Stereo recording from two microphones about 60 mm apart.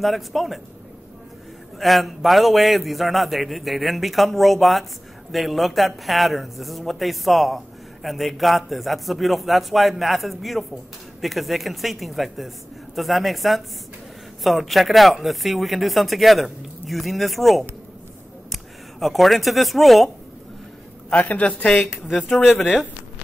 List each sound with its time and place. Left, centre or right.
0.0 s a man's voice: centre
1.8 s a man's voice: centre
21.1 s a woman's voice: left
21.4 s a woman's voice: centre